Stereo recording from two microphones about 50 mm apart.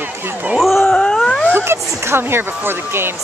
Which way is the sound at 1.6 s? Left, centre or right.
Right.